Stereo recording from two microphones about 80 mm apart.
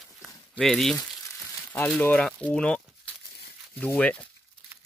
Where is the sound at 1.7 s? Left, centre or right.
Left.